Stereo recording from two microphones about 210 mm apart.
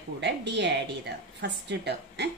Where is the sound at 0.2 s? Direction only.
55° right (ahead or behind).